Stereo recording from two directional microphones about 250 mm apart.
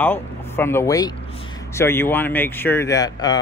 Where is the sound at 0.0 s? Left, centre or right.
Centre.